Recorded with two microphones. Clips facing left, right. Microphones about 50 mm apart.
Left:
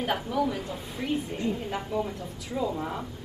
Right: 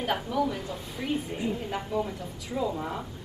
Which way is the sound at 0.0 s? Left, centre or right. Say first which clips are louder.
Even; centre.